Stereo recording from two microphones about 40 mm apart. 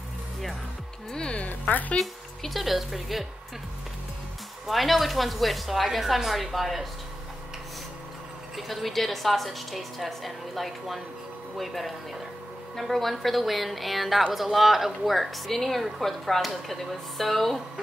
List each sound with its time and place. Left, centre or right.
1.3 s speech: left
2.0 s a woman's voice: centre
4.6 s a woman's voice: centre
8.5 s a woman's voice: centre